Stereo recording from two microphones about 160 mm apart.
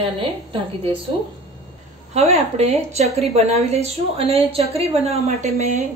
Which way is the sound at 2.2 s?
40° right (ahead or behind).